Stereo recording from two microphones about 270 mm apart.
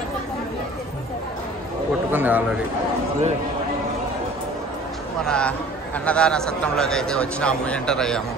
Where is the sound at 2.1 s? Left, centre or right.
Centre.